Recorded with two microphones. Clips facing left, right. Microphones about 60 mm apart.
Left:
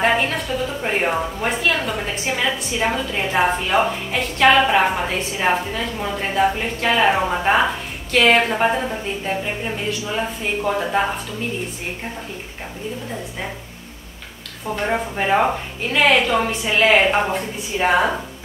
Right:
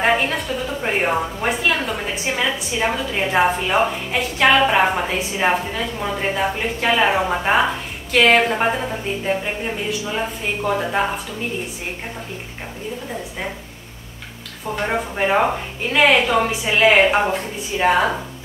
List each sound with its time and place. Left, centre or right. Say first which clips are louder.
0.0 s a sound: even; centre
0.8 s a woman's voice: right 2 dB; centre
14.9 s a woman's voice: even; centre